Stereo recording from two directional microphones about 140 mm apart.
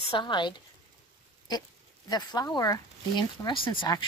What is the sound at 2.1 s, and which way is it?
Speech, 30° left (ahead or behind).